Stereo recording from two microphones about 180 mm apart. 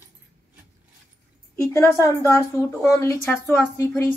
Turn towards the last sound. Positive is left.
turn(degrees=15)  # may be behind; listen again after turning